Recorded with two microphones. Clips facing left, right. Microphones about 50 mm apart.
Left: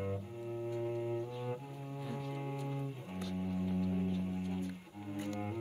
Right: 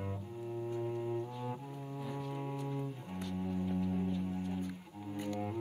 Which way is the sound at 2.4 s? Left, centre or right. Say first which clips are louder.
Right 1 dB; centre.